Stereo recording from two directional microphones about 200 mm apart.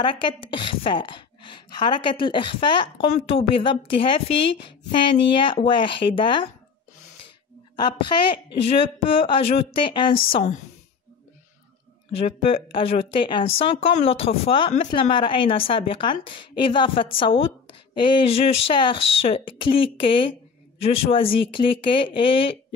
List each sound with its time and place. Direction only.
0.0 s speech: 25° left (ahead or behind)
7.7 s speech: 20° left (ahead or behind)
10.3 s a woman's voice: 35° left (ahead or behind)
12.2 s speech: 30° left (ahead or behind)